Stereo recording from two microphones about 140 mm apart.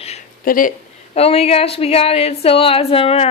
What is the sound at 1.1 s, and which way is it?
A woman's voice, 45° left (ahead or behind).